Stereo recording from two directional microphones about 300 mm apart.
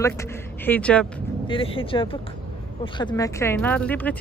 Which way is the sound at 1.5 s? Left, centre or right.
Centre.